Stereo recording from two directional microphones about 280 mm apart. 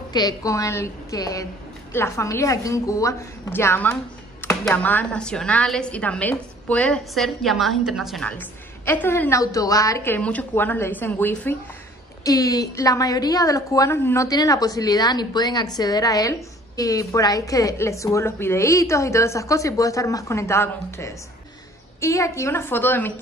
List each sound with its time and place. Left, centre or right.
0.1 s a woman's voice: centre